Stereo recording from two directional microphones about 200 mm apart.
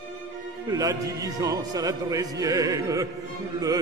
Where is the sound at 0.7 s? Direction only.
20° right (ahead or behind).